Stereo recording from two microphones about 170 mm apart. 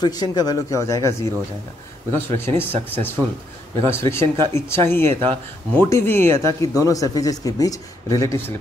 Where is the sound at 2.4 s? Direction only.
15° left (ahead or behind).